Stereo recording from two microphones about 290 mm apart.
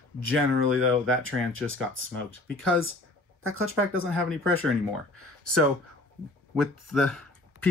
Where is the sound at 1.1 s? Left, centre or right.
Right.